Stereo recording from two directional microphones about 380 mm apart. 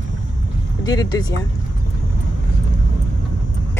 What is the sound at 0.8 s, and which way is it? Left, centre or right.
Speech, centre.